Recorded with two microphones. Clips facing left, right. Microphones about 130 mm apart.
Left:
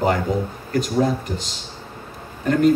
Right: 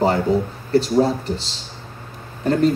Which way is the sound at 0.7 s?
30° right (ahead or behind).